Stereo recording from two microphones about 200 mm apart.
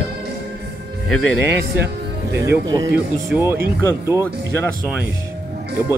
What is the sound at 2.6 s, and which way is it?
Speech, 20° right (ahead or behind).